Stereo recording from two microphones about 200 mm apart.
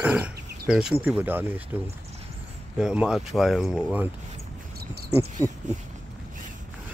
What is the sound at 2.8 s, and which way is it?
Speech, 5° right (ahead or behind).